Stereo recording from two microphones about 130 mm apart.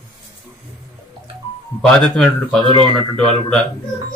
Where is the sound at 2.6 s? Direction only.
35° right (ahead or behind).